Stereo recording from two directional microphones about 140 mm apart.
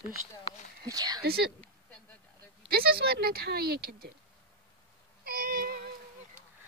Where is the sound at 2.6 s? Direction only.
90° right.